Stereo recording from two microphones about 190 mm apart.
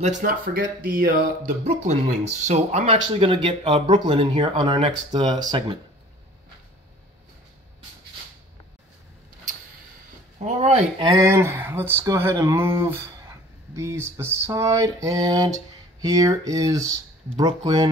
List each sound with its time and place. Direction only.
0.2 s speech: 50° right (ahead or behind); by 5.8 s 25° right (ahead or behind)
10.4 s speech: 35° right (ahead or behind); by 17.0 s 20° right (ahead or behind)